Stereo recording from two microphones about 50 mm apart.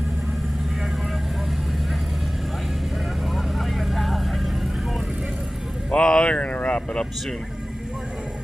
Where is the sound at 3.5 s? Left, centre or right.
Centre.